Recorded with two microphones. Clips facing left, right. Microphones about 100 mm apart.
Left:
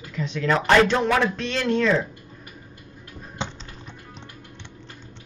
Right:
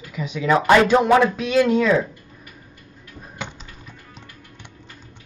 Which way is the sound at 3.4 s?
25° left (ahead or behind).